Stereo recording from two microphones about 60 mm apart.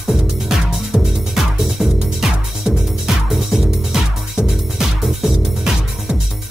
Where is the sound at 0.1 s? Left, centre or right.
Centre.